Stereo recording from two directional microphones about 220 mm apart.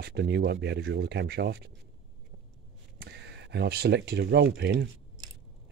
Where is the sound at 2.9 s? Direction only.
50° right (ahead or behind).